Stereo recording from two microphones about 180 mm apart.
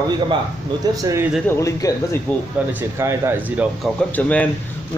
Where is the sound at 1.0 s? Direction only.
15° right (ahead or behind).